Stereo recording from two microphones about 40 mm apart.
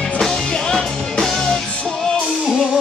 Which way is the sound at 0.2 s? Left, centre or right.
Centre.